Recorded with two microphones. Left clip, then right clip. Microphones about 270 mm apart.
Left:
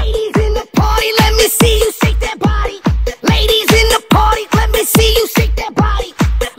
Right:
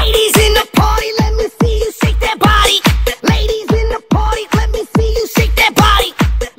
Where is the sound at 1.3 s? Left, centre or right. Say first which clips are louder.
Left 5 dB; left.